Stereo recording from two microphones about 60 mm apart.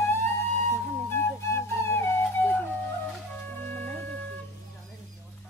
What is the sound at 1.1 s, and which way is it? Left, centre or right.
Flute, left.